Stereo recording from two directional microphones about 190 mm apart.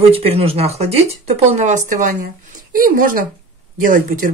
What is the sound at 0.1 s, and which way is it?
Speech, 30° right (ahead or behind).